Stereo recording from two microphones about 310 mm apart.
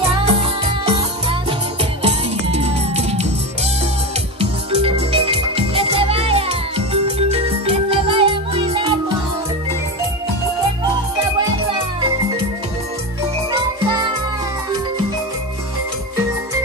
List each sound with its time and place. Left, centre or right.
0.1 s music: centre
2.0 s music: centre
4.4 s music: centre
13.5 s music: centre